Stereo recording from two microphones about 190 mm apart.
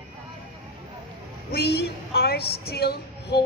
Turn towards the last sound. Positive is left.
turn(degrees=55)  # may be behind; listen again after turning